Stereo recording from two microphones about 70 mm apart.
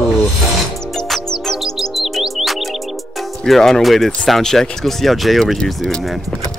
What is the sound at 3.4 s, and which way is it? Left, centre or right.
Speech, centre.